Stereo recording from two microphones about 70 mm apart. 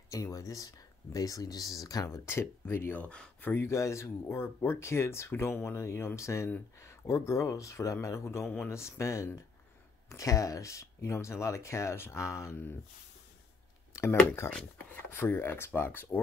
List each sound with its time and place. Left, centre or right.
0.1 s speech: left
2.0 s speech: left
3.0 s speech: centre
3.4 s speech: left
15.1 s speech: left